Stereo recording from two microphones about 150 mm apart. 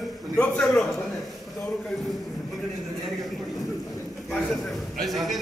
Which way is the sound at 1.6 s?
5° left (ahead or behind).